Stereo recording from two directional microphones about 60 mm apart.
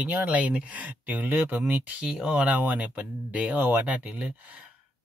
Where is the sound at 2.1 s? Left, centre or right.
Centre.